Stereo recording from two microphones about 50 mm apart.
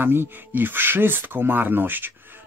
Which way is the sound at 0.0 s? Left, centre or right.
Right.